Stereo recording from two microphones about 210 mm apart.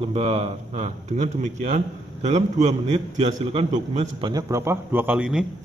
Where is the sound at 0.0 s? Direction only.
30° right (ahead or behind).